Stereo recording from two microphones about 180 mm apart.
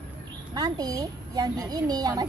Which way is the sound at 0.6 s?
20° right (ahead or behind).